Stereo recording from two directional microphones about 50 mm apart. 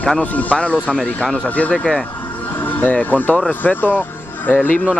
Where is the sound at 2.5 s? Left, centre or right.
Left.